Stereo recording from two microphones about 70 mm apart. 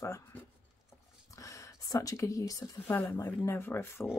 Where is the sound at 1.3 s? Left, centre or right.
Left.